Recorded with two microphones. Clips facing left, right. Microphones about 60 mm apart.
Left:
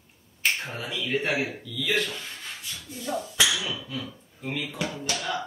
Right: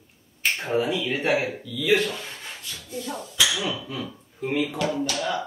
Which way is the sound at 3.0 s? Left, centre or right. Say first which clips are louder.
Left 5 dB; centre.